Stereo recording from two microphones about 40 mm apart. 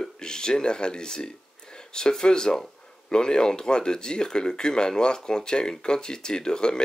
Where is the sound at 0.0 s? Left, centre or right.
Centre.